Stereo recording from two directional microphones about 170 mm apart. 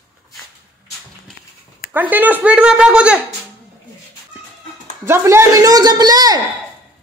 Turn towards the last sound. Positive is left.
turn(degrees=-25)  # may be behind; listen again after turning